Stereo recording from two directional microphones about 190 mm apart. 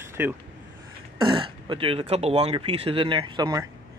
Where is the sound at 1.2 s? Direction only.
25° right (ahead or behind).